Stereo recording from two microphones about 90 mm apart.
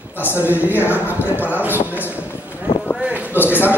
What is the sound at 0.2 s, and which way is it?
A man's voice, 25° left (ahead or behind).